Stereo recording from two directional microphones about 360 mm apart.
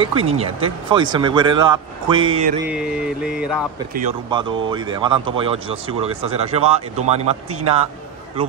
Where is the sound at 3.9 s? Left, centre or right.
Centre.